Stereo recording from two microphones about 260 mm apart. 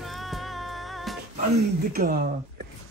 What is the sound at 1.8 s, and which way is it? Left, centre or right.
Speech, right.